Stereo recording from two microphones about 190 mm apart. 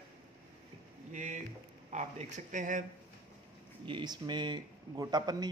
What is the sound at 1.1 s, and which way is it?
Speech, 40° right (ahead or behind).